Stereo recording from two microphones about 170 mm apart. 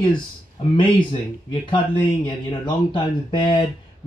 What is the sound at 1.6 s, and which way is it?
Speech, 30° left (ahead or behind).